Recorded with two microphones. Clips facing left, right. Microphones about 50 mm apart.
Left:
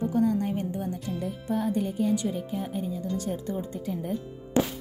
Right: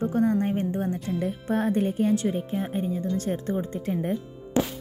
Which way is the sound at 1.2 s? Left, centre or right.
Right.